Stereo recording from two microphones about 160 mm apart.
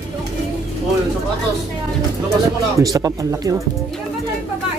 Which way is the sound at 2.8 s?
20° right (ahead or behind).